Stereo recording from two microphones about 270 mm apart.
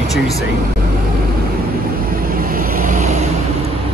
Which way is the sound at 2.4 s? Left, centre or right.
Right.